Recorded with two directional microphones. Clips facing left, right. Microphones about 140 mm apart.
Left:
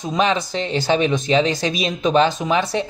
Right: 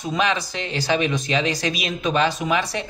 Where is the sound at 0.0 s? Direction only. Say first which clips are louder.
Left 3 dB; 20° left (ahead or behind).